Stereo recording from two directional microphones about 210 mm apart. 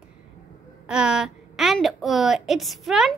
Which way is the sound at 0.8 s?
5° right (ahead or behind).